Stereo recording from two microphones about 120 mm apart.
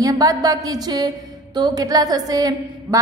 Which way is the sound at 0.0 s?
30° right (ahead or behind).